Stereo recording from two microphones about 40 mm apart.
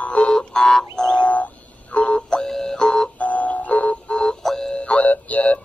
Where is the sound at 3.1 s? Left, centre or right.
Left.